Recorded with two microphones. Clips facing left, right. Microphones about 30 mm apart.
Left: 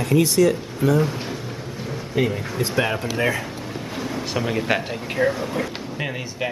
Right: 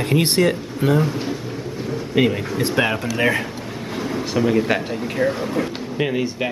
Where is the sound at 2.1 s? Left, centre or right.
Right.